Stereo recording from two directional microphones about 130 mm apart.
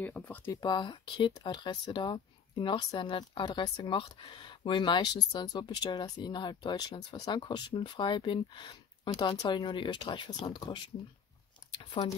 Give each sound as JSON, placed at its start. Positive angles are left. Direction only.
{"t": 0.0, "sound": "speech", "side_deg": 15}
{"t": 0.5, "sound": "speech", "side_deg": 30}
{"t": 11.8, "sound": "a sound", "side_deg": 40}